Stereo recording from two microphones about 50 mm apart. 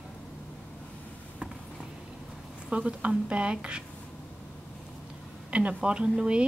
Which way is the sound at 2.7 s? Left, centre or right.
Right.